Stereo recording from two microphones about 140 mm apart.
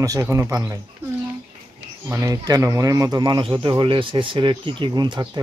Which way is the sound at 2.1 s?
25° right (ahead or behind).